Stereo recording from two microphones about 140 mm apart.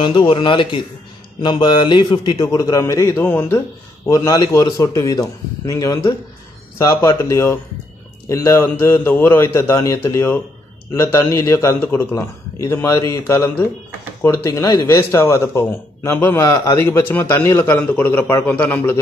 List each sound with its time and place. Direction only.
0.0 s a man's voice: 35° left (ahead or behind); by 18.9 s 15° left (ahead or behind)